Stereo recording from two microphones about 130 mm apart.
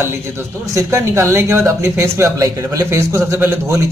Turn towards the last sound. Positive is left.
turn(degrees=-20)  # may be behind; listen again after turning